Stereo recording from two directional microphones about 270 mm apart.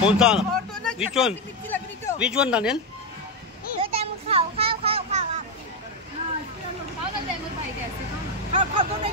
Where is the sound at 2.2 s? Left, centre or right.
Centre.